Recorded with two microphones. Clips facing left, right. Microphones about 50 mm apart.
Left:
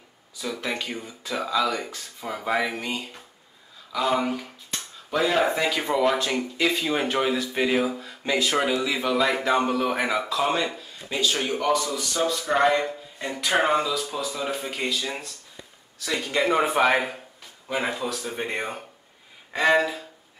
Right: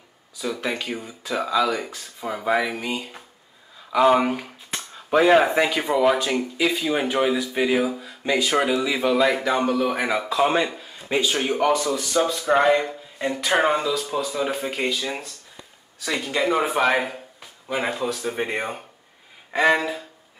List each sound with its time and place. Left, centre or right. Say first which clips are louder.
0.4 s speech: right 3 dB; centre
3.9 s speech: right 7 dB; right
5.5 s speech: right 3 dB; centre
10.3 s a man's voice: right 4 dB; centre